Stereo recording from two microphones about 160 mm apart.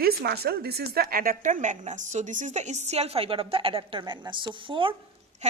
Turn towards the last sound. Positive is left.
turn(degrees=-45)  # may be behind; listen again after turning